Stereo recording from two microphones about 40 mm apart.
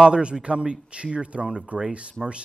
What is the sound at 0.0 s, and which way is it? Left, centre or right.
Speech, right.